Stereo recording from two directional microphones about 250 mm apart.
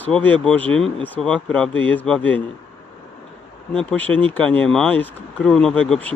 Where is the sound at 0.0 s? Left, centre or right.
Centre.